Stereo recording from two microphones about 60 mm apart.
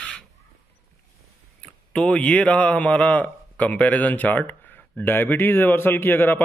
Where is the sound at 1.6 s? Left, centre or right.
Centre.